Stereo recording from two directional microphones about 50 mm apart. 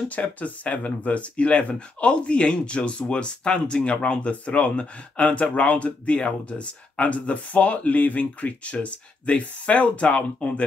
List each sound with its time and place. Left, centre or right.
0.1 s speech: left